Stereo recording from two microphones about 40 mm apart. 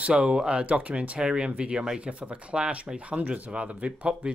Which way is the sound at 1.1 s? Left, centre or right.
Right.